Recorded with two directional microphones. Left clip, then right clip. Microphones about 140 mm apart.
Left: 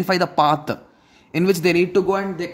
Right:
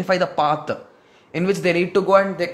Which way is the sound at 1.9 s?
15° left (ahead or behind).